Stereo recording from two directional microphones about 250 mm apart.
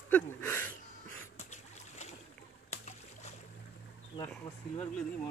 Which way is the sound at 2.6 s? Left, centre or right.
Left.